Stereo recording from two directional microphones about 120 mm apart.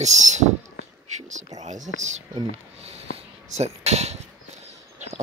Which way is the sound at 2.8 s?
65° right (ahead or behind).